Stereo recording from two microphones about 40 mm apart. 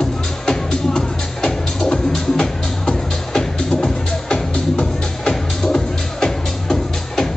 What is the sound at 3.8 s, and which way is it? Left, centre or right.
Music, left.